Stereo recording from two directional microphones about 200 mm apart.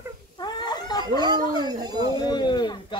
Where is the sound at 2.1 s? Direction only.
20° left (ahead or behind).